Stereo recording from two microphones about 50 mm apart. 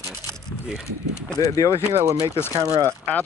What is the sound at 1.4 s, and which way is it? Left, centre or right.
Speech, left.